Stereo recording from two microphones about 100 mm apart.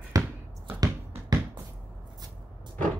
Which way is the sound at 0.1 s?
40° right (ahead or behind).